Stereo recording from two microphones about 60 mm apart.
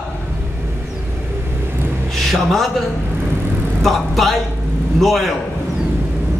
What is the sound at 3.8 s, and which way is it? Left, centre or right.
A man's voice, centre.